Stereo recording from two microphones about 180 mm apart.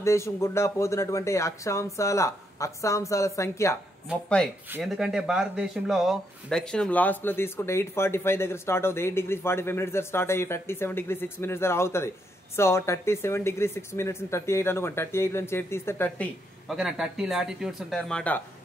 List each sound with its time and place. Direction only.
0.0 s speech: 15° left (ahead or behind)
4.8 s speech: centre (ahead or behind)
16.6 s speech: centre (ahead or behind)